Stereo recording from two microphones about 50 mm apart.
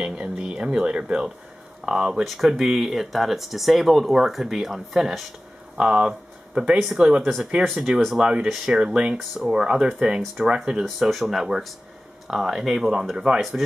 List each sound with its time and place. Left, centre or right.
0.2 s speech: right; by 13.7 s centre